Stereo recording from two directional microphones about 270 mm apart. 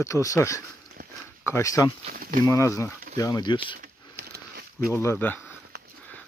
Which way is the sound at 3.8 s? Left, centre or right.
Right.